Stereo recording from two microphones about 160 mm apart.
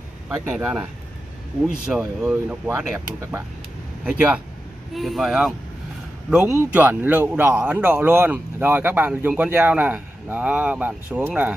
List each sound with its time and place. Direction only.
0.5 s a man's voice: 5° right (ahead or behind)
3.2 s a man's voice: 15° right (ahead or behind)